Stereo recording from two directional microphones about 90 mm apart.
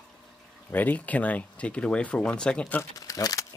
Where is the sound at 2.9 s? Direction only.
40° left (ahead or behind).